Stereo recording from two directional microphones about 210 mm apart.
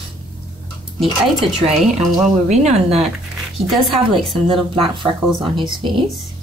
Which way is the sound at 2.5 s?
30° right (ahead or behind).